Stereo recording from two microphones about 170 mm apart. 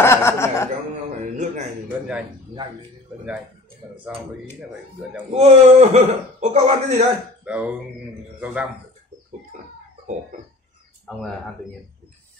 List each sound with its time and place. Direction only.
0.0 s chuckle: 15° left (ahead or behind)
1.3 s a sound: 45° right (ahead or behind)
5.3 s a man's voice: 40° right (ahead or behind)
7.4 s speech: 5° right (ahead or behind)